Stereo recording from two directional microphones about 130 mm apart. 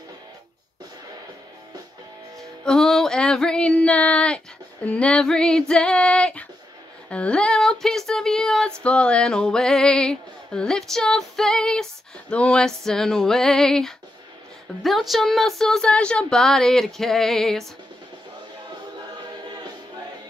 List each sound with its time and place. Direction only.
2.6 s music: 5° left (ahead or behind)
4.8 s female singing: 10° left (ahead or behind)
7.1 s a sound: 10° left (ahead or behind)